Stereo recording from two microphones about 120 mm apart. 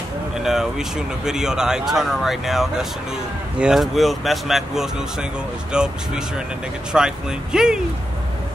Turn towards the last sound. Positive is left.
turn(degrees=-5)  # may be behind; listen again after turning